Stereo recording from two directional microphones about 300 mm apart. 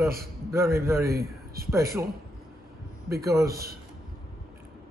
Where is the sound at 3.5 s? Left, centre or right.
Right.